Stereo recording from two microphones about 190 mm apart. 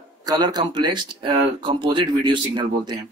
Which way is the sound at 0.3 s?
20° right (ahead or behind).